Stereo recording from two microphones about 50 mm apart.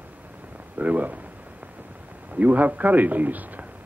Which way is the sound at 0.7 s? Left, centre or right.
Right.